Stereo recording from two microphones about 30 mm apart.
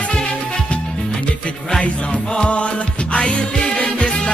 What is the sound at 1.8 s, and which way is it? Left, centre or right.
Music, left.